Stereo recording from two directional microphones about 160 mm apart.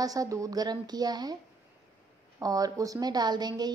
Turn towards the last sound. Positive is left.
turn(degrees=-25)  # may be behind; listen again after turning